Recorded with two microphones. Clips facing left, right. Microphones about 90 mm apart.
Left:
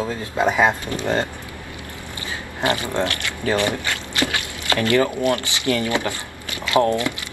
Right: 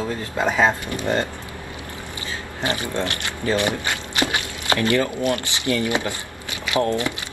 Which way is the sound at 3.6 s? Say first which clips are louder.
Left 1 dB; 20° right (ahead or behind).